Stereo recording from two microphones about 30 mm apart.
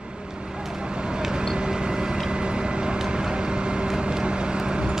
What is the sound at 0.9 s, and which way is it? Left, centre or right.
Vehicle, right.